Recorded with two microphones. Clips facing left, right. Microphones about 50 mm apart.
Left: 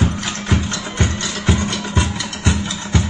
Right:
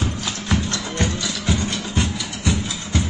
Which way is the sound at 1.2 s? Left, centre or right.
Left.